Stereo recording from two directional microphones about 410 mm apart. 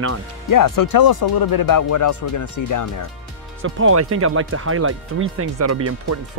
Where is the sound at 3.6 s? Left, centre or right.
Right.